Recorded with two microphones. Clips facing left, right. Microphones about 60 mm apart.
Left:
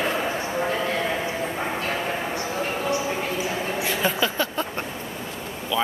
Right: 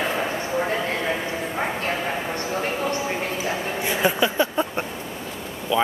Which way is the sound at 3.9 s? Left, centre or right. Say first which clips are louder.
Right 4 dB; centre.